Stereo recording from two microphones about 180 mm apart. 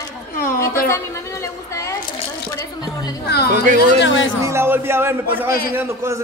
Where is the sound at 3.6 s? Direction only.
45° right (ahead or behind).